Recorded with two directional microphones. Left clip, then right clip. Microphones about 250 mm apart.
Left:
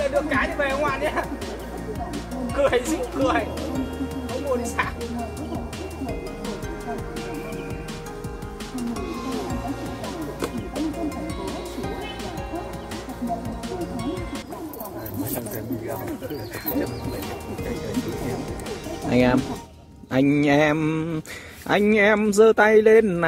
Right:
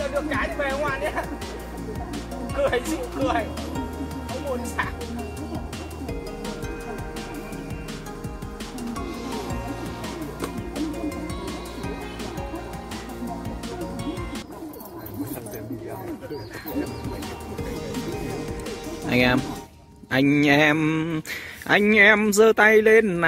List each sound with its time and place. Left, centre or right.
0.0 s speech: centre
2.4 s speech: centre
4.3 s music: centre
8.7 s music: centre
17.6 s music: centre
19.0 s speech: centre
20.1 s mantra: centre
21.6 s speech: centre